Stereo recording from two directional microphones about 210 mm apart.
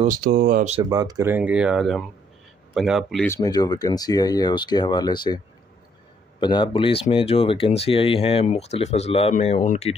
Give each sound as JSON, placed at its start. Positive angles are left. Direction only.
{"t": 0.0, "sound": "speech", "side_deg": -45}
{"t": 0.8, "sound": "speech", "side_deg": -15}
{"t": 3.3, "sound": "speech", "side_deg": 20}
{"t": 6.4, "sound": "speech", "side_deg": 20}